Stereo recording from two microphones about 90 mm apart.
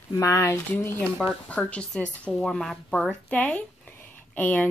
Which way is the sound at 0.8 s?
25° left (ahead or behind).